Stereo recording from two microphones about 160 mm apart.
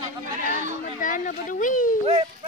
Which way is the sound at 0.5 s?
50° right (ahead or behind).